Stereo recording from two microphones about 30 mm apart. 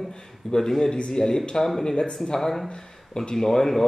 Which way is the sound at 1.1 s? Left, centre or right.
Centre.